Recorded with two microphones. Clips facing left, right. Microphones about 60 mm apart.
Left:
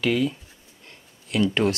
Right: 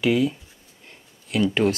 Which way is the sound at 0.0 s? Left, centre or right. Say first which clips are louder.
Right 2 dB; centre.